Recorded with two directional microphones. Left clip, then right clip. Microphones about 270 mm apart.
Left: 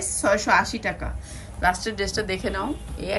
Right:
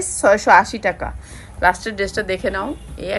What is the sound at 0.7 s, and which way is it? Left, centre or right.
A woman's voice, centre.